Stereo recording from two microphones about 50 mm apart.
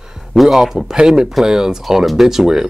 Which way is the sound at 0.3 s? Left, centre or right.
Centre.